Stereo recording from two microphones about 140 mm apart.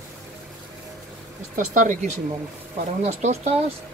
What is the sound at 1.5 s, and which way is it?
Speech, 65° right (ahead or behind).